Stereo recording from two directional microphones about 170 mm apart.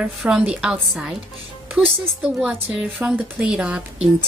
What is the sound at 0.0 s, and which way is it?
A woman's voice, 10° right (ahead or behind).